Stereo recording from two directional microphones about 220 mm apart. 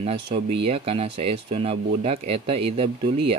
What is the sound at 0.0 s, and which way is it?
Speech, 25° right (ahead or behind).